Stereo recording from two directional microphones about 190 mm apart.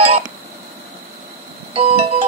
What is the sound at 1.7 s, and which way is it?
Music, 30° right (ahead or behind).